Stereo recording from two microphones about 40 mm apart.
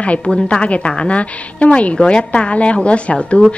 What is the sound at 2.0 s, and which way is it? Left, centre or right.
Speech, left.